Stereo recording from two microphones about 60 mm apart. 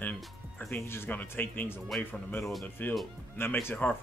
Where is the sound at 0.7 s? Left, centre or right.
Left.